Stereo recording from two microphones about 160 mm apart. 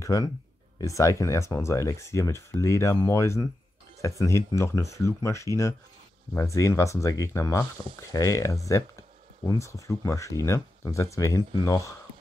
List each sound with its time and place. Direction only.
0.0 s speech: 20° left (ahead or behind)